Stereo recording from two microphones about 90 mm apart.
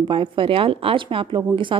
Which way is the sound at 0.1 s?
80° right.